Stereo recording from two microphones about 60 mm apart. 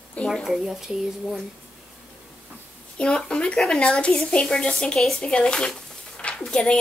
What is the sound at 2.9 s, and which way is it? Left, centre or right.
Speech, centre.